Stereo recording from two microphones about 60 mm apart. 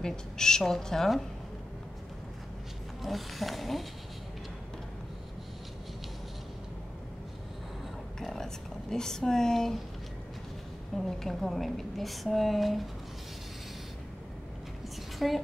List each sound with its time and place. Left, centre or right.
0.0 s speech: centre
3.0 s a woman's voice: centre
8.2 s a sound: centre
8.9 s speech: centre
11.0 s a woman's voice: centre
15.1 s a woman's voice: centre